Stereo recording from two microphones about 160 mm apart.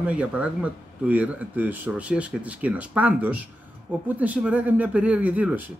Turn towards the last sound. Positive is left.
turn(degrees=-10)  # may be behind; listen again after turning